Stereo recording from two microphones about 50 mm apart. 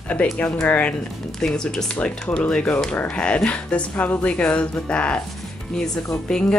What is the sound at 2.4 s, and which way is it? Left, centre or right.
Speech, left.